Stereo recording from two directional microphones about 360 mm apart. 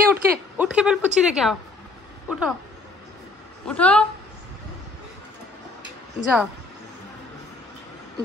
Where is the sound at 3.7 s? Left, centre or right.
Centre.